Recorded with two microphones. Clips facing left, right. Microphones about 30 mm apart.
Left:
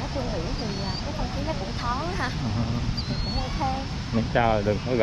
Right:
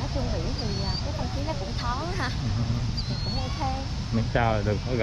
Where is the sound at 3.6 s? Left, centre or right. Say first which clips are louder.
Left 3 dB; centre.